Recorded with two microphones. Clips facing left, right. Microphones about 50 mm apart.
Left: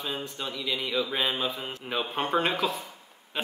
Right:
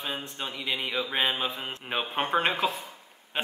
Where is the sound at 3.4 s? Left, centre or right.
Right.